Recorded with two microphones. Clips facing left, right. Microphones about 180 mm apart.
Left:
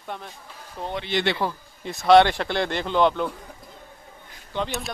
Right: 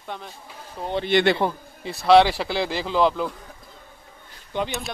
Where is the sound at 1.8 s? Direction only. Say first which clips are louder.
Even; 5° right (ahead or behind).